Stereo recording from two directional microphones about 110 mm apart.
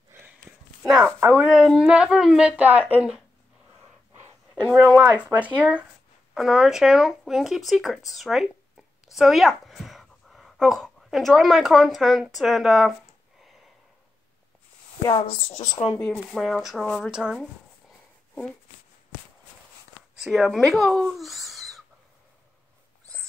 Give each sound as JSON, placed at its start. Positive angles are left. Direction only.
{"t": 0.5, "sound": "a sound", "side_deg": -30}
{"t": 1.2, "sound": "speech", "side_deg": -10}
{"t": 4.6, "sound": "a woman's voice", "side_deg": -10}
{"t": 15.2, "sound": "speech", "side_deg": 65}
{"t": 16.0, "sound": "speech", "side_deg": 5}
{"t": 17.1, "sound": "speech", "side_deg": -5}
{"t": 20.2, "sound": "speech", "side_deg": -5}